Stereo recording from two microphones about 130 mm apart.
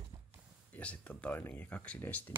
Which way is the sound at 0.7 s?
10° left (ahead or behind).